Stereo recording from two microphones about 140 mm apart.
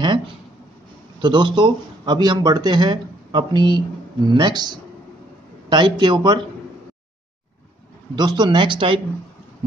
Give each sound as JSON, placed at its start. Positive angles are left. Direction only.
{"t": 1.2, "sound": "a man's voice", "side_deg": -35}
{"t": 8.2, "sound": "a man's voice", "side_deg": -30}